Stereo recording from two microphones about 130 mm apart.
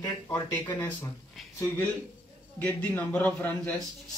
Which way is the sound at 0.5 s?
15° left (ahead or behind).